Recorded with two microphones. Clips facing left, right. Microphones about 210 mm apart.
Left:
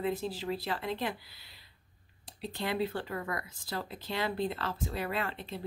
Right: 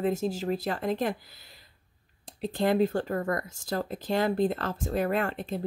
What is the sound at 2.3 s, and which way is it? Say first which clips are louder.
Speech: right 9 dB; 50° right (ahead or behind).